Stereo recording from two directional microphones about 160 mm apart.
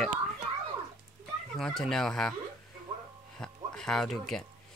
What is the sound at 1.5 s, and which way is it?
Speech, centre (ahead or behind).